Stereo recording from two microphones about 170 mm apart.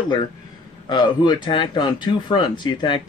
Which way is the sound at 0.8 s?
25° left (ahead or behind).